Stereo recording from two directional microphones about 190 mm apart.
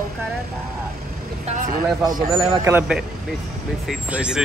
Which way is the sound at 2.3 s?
15° right (ahead or behind).